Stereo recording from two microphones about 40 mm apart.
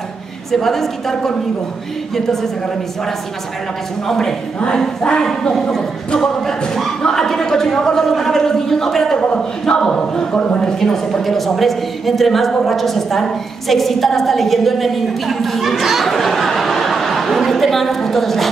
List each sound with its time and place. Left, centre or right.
0.5 s speech: centre
4.1 s a woman's voice: centre